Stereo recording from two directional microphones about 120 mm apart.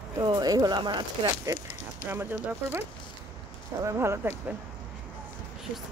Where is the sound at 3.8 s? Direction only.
25° right (ahead or behind).